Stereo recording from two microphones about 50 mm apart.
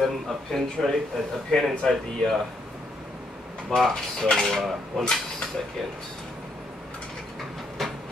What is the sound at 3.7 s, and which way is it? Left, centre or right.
Speech, centre.